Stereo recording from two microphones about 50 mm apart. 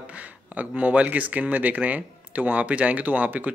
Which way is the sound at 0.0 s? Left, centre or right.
Right.